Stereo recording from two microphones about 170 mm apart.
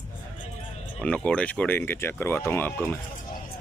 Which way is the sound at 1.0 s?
5° left (ahead or behind).